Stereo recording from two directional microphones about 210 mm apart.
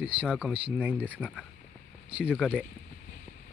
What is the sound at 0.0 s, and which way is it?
Speech, 5° right (ahead or behind).